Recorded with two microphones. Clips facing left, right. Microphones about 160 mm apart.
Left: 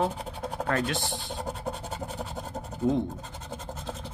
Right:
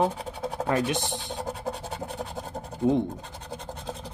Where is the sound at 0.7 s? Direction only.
15° right (ahead or behind).